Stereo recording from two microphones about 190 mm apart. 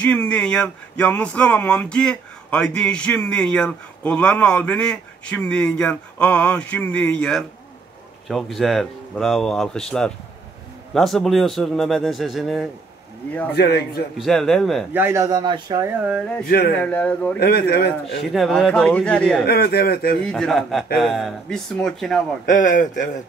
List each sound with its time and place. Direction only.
0.0 s a man's voice: 5° left (ahead or behind)
13.6 s speech: 60° left (ahead or behind)
14.1 s a man's voice: centre (ahead or behind)
14.9 s speech: 10° right (ahead or behind)
16.1 s a man's voice: centre (ahead or behind)
16.4 s speech: 55° left (ahead or behind)
16.7 s speech: 5° left (ahead or behind)
17.4 s speech: 55° left (ahead or behind)
18.3 s a man's voice: centre (ahead or behind)
19.4 s speech: 55° left (ahead or behind)
20.2 s a man's voice: centre (ahead or behind)
22.5 s a man's voice: 45° left (ahead or behind)